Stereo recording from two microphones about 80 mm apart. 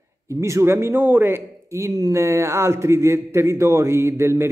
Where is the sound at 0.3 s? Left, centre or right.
Right.